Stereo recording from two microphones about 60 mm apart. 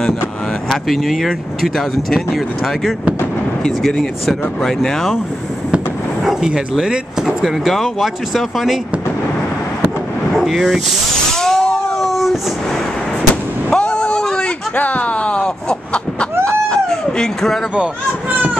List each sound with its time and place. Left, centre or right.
0.7 s speech: centre
6.2 s bow-wow: centre
6.8 s speech: centre
7.4 s speech: centre
10.3 s speech: centre
11.3 s a sound: centre
13.7 s a sound: centre
14.8 s a sound: left; by 17.6 s centre
18.3 s vehicle: right